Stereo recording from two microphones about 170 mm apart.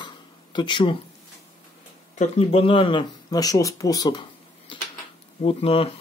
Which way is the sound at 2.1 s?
40° left (ahead or behind).